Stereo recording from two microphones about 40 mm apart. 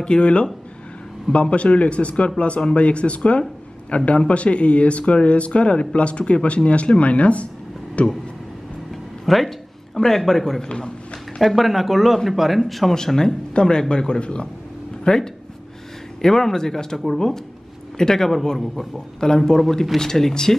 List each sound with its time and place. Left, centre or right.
0.0 s speech: left
9.2 s speech: centre
11.4 s speech: centre
12.9 s speech: centre